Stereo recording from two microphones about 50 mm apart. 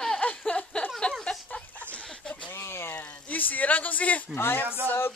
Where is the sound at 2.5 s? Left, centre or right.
Left.